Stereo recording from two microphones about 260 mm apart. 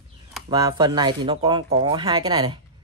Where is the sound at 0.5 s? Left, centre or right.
Centre.